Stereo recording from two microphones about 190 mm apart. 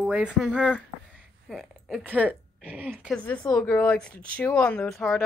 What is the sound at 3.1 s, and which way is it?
Speech, 5° left (ahead or behind).